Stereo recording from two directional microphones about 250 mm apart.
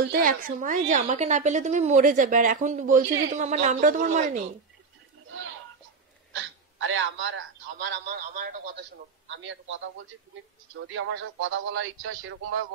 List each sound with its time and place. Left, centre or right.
0.1 s a woman's voice: right
6.3 s speech: right
9.3 s speech: right
10.9 s speech: right